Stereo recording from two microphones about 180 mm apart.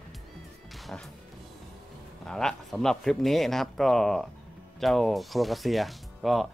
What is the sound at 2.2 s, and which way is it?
Speech, 5° left (ahead or behind).